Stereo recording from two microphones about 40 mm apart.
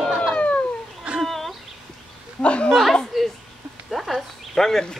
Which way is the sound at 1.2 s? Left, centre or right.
Centre.